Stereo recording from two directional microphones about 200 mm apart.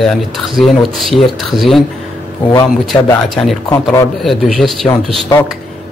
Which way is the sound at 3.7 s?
15° left (ahead or behind).